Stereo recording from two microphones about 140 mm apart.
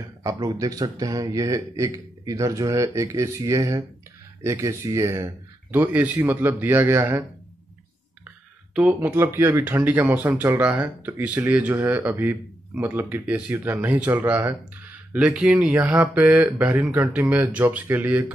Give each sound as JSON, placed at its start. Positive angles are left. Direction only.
{"t": 0.2, "sound": "speech", "side_deg": -25}
{"t": 8.7, "sound": "speech", "side_deg": -10}